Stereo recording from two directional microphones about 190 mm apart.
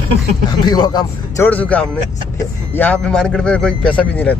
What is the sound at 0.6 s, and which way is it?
Speech, 20° left (ahead or behind).